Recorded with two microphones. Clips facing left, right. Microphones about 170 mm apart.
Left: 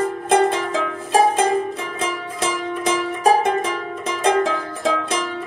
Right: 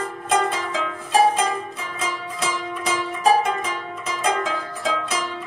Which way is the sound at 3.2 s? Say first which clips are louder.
Left 2 dB; 50° left (ahead or behind).